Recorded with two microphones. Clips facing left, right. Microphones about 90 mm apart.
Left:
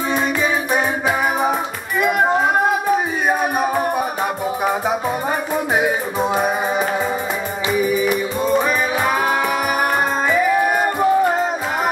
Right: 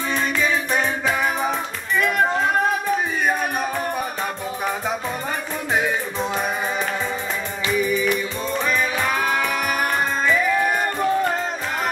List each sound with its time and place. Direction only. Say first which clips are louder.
2.0 s music: left 4 dB; 15° left (ahead or behind)
5.8 s music: left 2 dB; 15° left (ahead or behind)
7.7 s music: left 3 dB; 15° left (ahead or behind)
10.2 s music: left 3 dB; 20° left (ahead or behind)